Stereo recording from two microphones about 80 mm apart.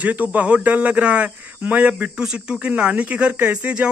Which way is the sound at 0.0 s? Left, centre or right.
Centre.